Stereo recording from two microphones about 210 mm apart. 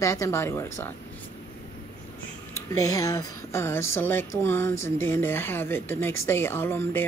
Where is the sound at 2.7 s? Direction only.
15° left (ahead or behind).